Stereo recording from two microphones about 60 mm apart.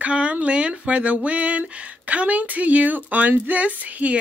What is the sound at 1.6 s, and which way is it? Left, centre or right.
Speech, right.